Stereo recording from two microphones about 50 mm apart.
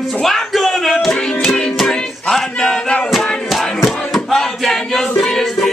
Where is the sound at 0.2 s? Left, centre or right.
Centre.